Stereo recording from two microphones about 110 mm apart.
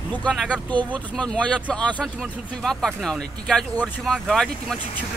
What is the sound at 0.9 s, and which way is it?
Speech, 10° left (ahead or behind).